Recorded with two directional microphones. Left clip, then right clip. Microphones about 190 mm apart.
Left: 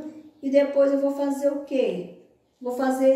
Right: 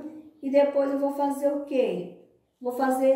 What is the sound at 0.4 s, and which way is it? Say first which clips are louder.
A woman's voice: left 2 dB; 10° right (ahead or behind).